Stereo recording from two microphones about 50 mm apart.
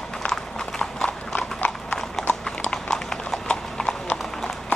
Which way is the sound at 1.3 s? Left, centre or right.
Left.